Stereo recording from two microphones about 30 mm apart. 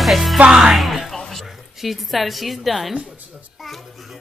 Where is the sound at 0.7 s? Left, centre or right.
Centre.